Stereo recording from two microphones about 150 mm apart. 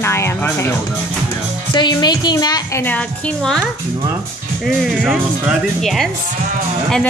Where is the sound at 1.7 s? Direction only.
30° left (ahead or behind).